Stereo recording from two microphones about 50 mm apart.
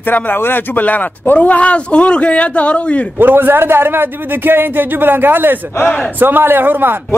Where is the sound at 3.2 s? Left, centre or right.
Right.